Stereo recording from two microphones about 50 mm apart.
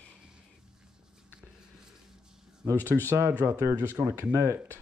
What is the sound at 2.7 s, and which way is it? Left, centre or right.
Speech, left.